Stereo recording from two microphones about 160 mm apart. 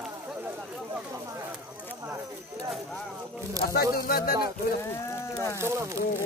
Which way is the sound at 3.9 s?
65° left (ahead or behind).